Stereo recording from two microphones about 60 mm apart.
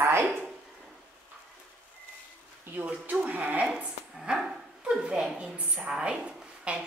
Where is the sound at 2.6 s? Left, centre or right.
Right.